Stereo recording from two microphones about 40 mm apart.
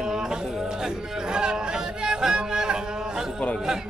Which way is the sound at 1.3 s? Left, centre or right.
Centre.